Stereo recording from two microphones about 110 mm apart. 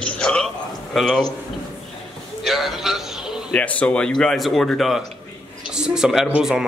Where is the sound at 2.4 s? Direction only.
Centre (ahead or behind).